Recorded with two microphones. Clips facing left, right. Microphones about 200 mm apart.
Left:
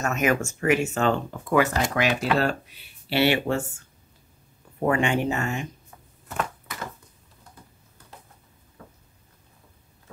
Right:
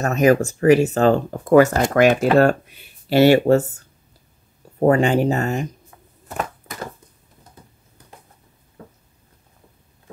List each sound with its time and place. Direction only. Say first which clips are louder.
0.0 s speech: right 8 dB; 35° right (ahead or behind)
4.7 s speech: right 7 dB; 35° right (ahead or behind)
6.2 s a sound: right 3 dB; 40° right (ahead or behind)